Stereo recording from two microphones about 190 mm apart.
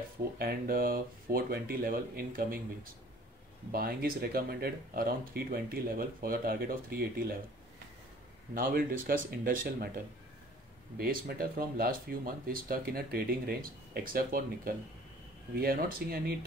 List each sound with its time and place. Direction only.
0.4 s speech: 50° right (ahead or behind)
8.5 s speech: 50° right (ahead or behind)
11.0 s speech: 50° right (ahead or behind)